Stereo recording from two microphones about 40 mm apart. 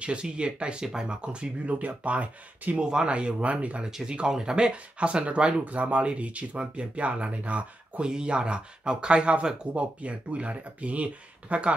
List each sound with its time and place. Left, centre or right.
0.0 s speech: right
1.7 s speech: right
2.8 s speech: centre
3.1 s speech: right
8.0 s speech: right